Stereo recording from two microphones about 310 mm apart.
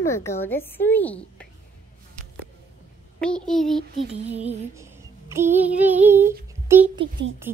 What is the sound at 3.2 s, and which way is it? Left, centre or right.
Speech, centre.